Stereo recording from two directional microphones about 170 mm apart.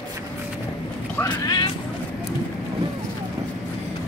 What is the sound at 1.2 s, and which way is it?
Speech, 25° left (ahead or behind).